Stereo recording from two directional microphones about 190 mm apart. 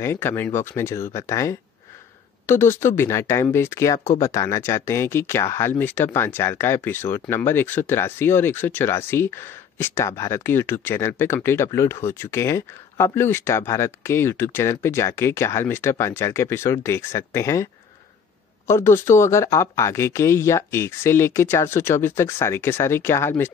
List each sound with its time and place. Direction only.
0.0 s speech: 10° left (ahead or behind)
18.7 s speech: 15° left (ahead or behind)